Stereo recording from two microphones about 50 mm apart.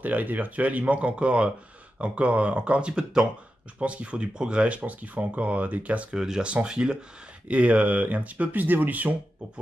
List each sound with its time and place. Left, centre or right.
0.0 s speech: right
6.1 s speech: centre
6.4 s speech: right